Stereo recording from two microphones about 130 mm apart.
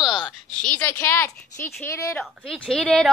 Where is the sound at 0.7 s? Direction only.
20° left (ahead or behind).